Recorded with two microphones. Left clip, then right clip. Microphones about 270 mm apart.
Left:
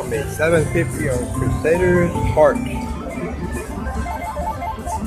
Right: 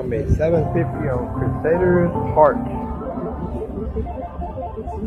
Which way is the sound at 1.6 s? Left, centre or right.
Left.